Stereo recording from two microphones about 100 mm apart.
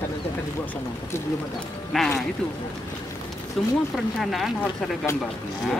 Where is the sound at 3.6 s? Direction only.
Centre (ahead or behind).